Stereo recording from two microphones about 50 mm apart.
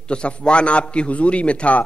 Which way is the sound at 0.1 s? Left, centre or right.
Centre.